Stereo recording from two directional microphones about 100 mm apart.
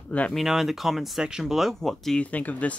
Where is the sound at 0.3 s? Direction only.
Centre (ahead or behind).